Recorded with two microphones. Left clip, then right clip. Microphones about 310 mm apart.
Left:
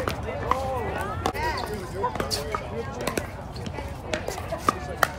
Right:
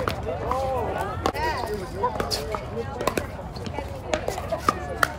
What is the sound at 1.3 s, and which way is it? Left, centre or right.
Run, right.